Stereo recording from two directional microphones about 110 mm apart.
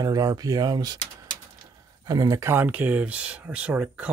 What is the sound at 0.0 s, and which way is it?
Speech, 35° right (ahead or behind).